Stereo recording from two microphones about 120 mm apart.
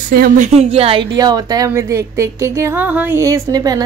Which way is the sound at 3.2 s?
30° right (ahead or behind).